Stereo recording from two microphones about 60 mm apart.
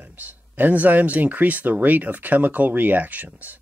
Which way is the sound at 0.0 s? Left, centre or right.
Right.